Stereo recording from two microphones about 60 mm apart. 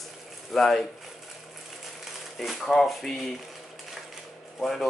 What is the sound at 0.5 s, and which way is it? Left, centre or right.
Speech, centre.